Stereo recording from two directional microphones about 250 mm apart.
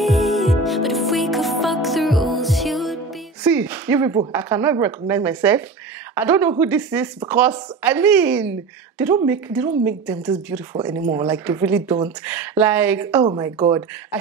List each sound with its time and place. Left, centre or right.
0.0 s music: centre
4.3 s a woman's voice: centre
13.2 s speech: centre